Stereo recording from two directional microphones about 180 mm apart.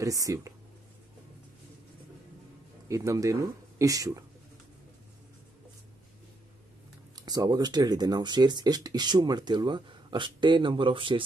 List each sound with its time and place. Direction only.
0.0 s speech: 20° right (ahead or behind)
2.9 s speech: 15° right (ahead or behind)
7.2 s speech: 20° right (ahead or behind)